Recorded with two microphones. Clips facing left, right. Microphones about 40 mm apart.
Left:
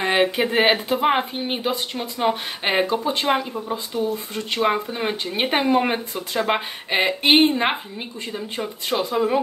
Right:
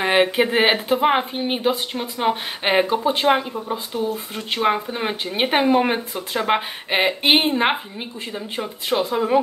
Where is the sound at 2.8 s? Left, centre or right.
Centre.